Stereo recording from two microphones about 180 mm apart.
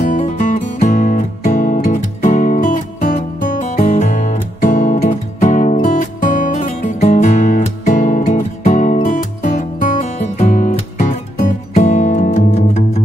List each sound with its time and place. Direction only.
0.1 s music: 40° left (ahead or behind)